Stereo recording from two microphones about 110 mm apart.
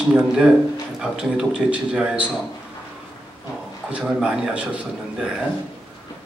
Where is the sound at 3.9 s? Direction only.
5° right (ahead or behind).